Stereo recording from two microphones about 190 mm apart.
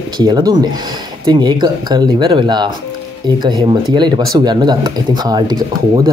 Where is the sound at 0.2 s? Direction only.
20° right (ahead or behind).